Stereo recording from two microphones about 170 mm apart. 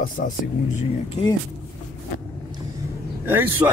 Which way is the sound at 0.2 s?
55° left (ahead or behind).